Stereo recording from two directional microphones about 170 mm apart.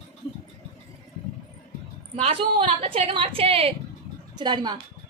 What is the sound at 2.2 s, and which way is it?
A woman's voice, 35° right (ahead or behind).